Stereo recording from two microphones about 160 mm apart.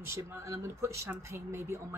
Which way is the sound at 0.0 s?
15° right (ahead or behind).